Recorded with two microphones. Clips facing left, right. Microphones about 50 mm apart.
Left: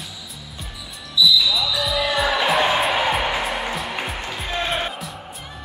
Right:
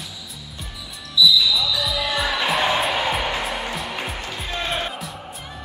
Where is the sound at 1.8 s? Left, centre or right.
Centre.